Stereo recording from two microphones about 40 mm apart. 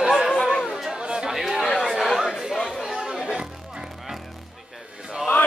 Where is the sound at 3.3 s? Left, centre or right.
Right.